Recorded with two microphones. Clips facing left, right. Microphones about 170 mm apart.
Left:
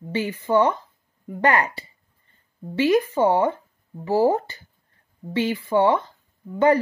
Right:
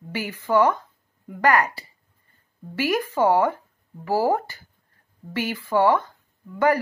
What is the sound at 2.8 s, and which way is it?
Speech, 20° left (ahead or behind).